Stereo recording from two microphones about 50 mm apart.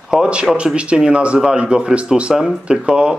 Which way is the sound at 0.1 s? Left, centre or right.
Centre.